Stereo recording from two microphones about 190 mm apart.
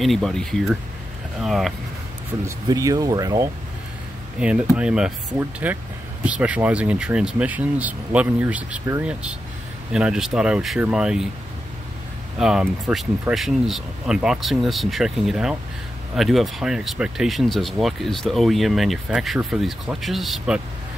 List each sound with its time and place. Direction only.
0.0 s speech: centre (ahead or behind)
2.4 s speech: 20° right (ahead or behind)
4.4 s speech: 5° right (ahead or behind)
12.4 s speech: 5° right (ahead or behind)